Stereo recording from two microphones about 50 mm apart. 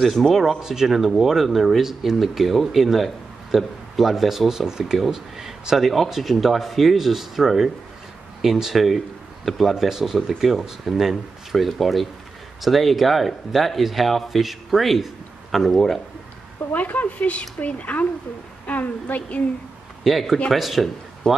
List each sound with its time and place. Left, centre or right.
0.0 s speech: centre
0.6 s speech: centre
16.7 s speech: left
20.0 s a man's voice: centre
21.2 s speech: centre